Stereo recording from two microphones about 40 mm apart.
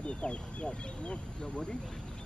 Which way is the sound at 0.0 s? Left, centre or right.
Left.